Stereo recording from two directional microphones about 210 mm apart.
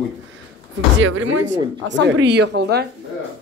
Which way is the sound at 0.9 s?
65° right (ahead or behind).